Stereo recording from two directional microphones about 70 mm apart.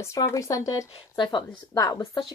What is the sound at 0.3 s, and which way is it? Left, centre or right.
Speech, left.